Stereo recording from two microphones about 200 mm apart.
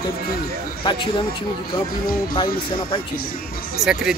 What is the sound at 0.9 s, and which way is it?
Speech, 25° left (ahead or behind).